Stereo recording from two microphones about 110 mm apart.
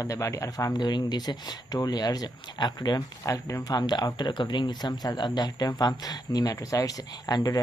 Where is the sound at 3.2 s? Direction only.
30° left (ahead or behind).